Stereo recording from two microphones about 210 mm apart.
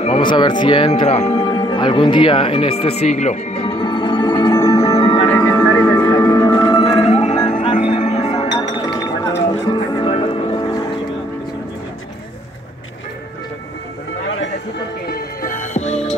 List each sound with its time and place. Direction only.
0.0 s speech: 25° left (ahead or behind)
4.9 s music: 20° left (ahead or behind)
5.3 s music: 10° left (ahead or behind); by 8.5 s 30° left (ahead or behind)
8.5 s music: 20° left (ahead or behind)
15.0 s music: 45° left (ahead or behind)